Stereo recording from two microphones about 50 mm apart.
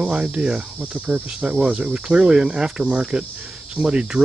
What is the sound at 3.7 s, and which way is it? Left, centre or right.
Cricket, centre.